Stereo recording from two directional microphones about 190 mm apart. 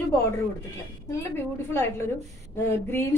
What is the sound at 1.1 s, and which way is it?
A woman's voice, 15° left (ahead or behind).